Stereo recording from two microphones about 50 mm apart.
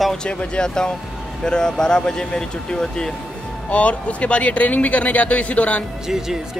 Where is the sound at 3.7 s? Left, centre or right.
Left.